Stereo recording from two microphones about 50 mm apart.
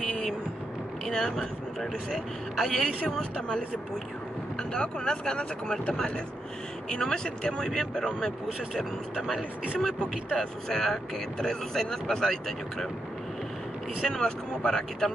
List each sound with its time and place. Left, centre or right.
0.0 s a sound: centre
1.0 s a man's voice: centre
4.7 s speech: centre
9.8 s speech: centre
14.0 s speech: centre